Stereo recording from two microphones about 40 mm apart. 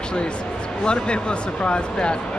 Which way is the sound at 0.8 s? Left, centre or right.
Left.